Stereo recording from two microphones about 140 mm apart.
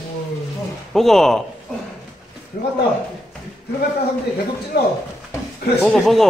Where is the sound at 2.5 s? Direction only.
90° left.